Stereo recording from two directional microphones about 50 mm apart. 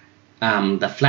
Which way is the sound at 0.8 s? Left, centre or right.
Left.